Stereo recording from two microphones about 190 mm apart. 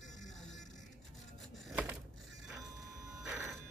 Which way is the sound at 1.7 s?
5° right (ahead or behind).